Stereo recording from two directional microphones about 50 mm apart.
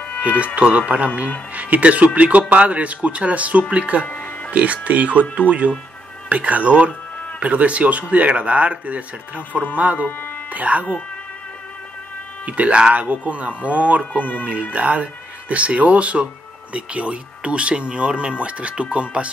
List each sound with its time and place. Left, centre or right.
0.2 s speech: right
4.0 s speech: left
4.5 s speech: right
6.2 s speech: right
12.4 s speech: right
14.1 s speech: left
14.4 s speech: right